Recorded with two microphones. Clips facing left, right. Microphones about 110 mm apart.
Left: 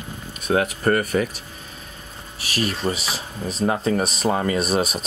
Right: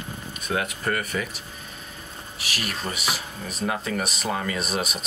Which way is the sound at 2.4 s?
35° left (ahead or behind).